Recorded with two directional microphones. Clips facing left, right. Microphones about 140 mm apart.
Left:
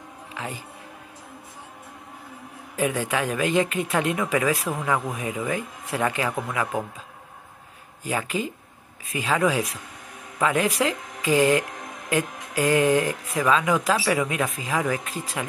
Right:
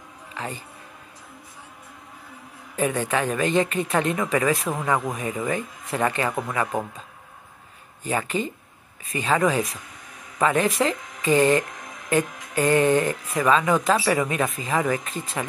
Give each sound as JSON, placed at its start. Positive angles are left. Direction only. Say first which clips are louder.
{"t": 0.3, "sound": "music", "louder": "right 1 dB", "side_deg": 10}
{"t": 2.7, "sound": "speech", "louder": "right 1 dB", "side_deg": 5}
{"t": 8.0, "sound": "speech", "louder": "right 1 dB", "side_deg": 0}